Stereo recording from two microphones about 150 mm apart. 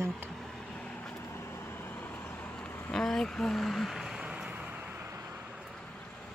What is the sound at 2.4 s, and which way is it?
Vehicle, 5° left (ahead or behind).